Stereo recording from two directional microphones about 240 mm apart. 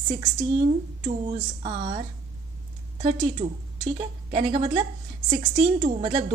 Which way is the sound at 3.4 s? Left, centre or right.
Right.